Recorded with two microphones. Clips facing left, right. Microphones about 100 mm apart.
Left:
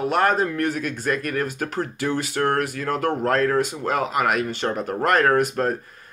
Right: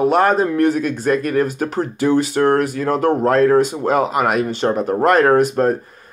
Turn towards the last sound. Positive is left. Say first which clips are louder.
# right 6 dB
turn(degrees=-25)  # may be behind; listen again after turning